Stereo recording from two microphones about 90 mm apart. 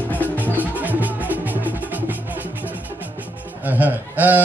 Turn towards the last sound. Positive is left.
turn(degrees=-20)  # may be behind; listen again after turning